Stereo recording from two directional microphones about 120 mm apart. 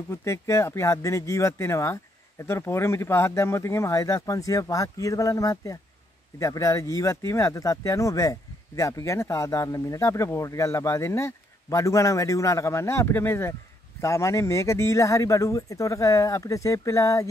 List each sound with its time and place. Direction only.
0.1 s speech: 25° left (ahead or behind)